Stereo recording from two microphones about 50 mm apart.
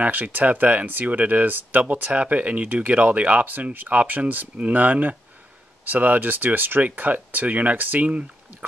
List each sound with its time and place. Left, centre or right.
0.0 s speech: right